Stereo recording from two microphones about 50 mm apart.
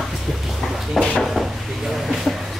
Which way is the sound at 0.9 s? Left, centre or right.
Centre.